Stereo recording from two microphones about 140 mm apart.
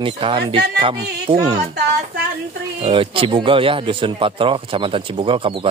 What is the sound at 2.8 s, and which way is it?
Speech, 45° right (ahead or behind).